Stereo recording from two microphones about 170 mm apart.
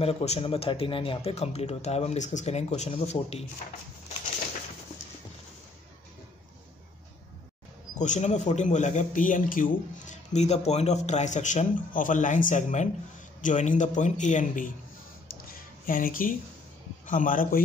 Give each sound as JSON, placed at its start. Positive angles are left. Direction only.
{"t": 0.0, "sound": "a man's voice", "side_deg": 40}
{"t": 8.0, "sound": "speech", "side_deg": 45}
{"t": 15.9, "sound": "speech", "side_deg": 55}